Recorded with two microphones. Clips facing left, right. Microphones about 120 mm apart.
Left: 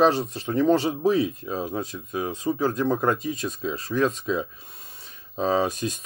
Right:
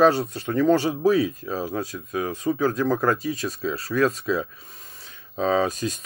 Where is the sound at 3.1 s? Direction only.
Centre (ahead or behind).